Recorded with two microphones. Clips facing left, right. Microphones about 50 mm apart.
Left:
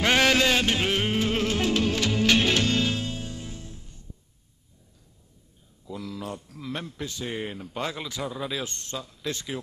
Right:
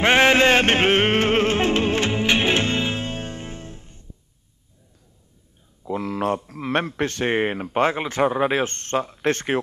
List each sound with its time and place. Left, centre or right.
0.0 s music: right
5.9 s speech: right